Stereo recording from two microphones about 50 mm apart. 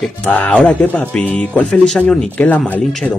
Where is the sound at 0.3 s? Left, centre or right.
Left.